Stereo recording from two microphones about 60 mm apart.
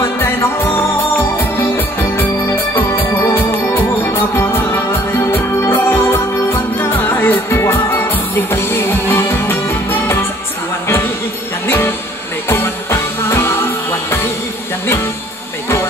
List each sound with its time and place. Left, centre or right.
0.2 s music: left
2.7 s organ: left
3.3 s music: left
11.6 s music: left